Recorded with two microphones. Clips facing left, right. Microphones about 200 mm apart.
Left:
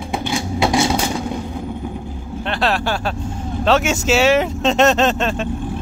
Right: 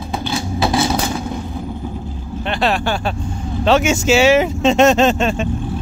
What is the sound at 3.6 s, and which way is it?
Speech, centre (ahead or behind).